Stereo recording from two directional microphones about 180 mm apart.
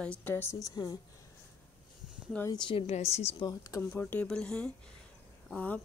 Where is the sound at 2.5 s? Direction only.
25° left (ahead or behind).